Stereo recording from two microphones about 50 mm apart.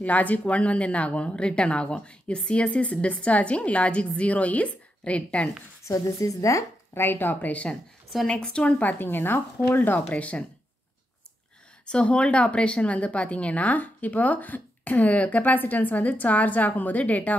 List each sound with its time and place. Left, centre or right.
0.0 s a woman's voice: left
5.9 s a woman's voice: left
7.0 s speech: left
8.3 s a woman's voice: centre
8.6 s speech: left
9.0 s a woman's voice: left
11.8 s speech: left